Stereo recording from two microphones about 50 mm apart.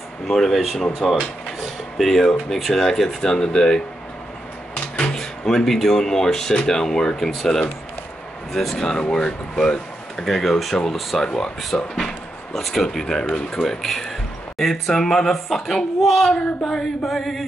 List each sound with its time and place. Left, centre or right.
0.3 s speech: centre
4.7 s a sound: left
5.1 s speech: centre
10.2 s speech: centre